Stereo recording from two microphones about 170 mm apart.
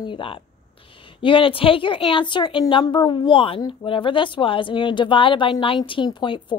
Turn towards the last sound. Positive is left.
turn(degrees=30)  # may be behind; listen again after turning